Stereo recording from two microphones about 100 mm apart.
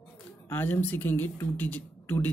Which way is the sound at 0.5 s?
20° left (ahead or behind).